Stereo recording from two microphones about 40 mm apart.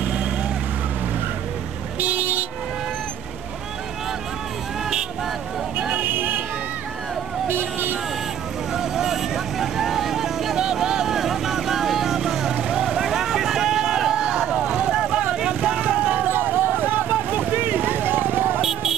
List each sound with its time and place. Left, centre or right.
0.0 s vehicle: right
2.0 s vehicle: right
5.9 s a sound: right
7.4 s vehicle: right
8.7 s vehicle: centre; by 16.1 s right
16.1 s vehicle: right
18.6 s vehicle: centre